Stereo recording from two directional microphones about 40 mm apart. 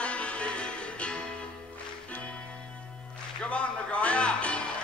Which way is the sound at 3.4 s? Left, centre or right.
Left.